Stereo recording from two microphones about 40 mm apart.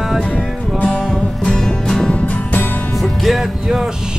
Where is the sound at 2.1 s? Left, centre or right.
Left.